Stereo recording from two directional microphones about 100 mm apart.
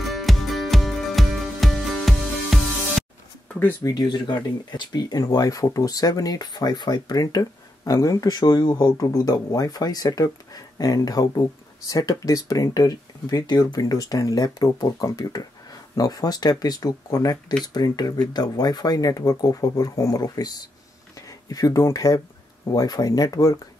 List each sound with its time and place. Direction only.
0.0 s music: centre (ahead or behind)
3.8 s speech: 45° left (ahead or behind)